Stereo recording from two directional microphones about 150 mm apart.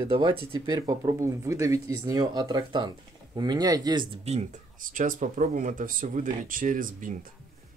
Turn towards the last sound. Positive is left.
turn(degrees=-65)  # may be behind; listen again after turning